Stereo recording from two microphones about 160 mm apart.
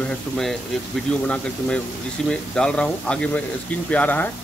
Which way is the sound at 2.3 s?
5° left (ahead or behind).